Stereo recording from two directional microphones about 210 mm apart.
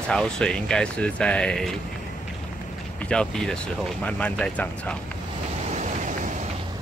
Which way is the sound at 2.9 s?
5° left (ahead or behind).